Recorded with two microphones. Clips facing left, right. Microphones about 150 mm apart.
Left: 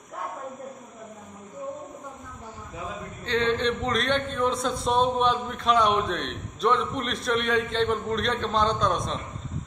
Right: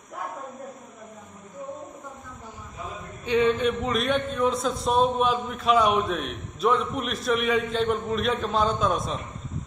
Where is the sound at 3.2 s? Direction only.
10° right (ahead or behind).